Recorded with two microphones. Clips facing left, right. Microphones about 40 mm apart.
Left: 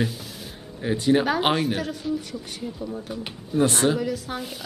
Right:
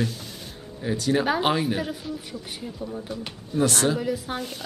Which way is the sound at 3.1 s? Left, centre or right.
Centre.